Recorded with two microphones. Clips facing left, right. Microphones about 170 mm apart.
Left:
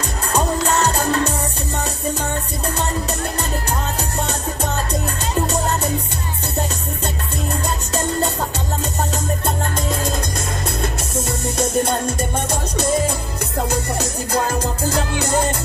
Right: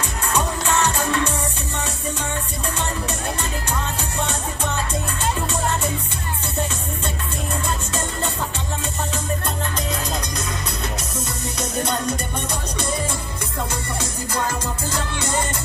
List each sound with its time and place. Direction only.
0.3 s music: 35° left (ahead or behind)
4.2 s music: 40° left (ahead or behind)
7.6 s music: 40° left (ahead or behind)
11.5 s music: 50° left (ahead or behind)